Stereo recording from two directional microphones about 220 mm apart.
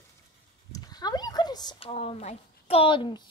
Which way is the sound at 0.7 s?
15° left (ahead or behind).